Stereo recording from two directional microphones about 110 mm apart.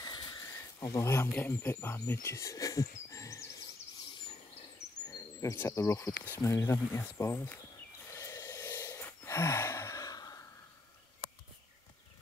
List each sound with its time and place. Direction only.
0.0 s a sound: 40° left (ahead or behind)
5.0 s speech: 30° left (ahead or behind)
8.1 s gasp: 30° left (ahead or behind)